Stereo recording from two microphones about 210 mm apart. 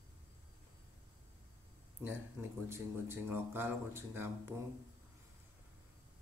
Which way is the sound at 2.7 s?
10° right (ahead or behind).